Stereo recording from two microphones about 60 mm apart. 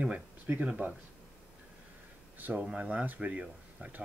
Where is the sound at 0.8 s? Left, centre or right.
Right.